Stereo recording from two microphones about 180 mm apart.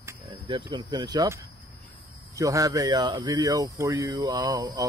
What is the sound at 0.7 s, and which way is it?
Speech, 25° right (ahead or behind).